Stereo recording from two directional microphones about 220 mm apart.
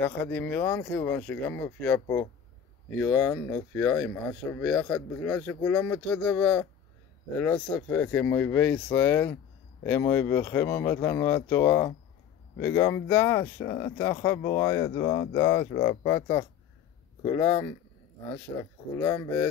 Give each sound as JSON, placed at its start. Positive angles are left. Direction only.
{"t": 0.0, "sound": "speech", "side_deg": 10}